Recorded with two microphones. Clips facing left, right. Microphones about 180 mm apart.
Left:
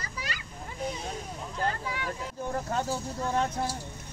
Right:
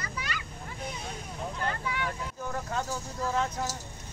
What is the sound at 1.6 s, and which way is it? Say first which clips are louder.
Vehicle: left 2 dB; 35° left (ahead or behind).